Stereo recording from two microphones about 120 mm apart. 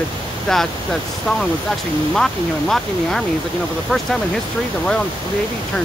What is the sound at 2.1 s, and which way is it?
Speech, 5° left (ahead or behind).